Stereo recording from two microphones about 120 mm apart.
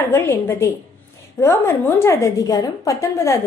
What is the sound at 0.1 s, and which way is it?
A woman's voice, 20° left (ahead or behind).